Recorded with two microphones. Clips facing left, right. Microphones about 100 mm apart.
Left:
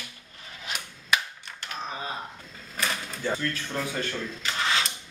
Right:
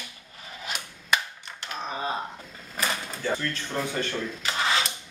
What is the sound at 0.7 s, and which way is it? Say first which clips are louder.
Cap gun: even; centre (ahead or behind).